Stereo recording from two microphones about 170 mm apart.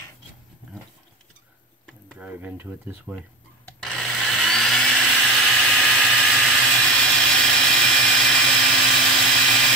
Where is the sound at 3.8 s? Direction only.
5° left (ahead or behind).